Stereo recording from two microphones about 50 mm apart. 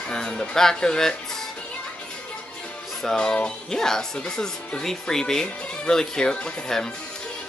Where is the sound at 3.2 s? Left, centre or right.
Centre.